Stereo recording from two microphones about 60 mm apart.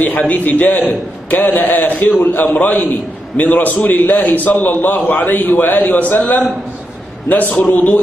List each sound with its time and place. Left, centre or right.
0.0 s a man's voice: left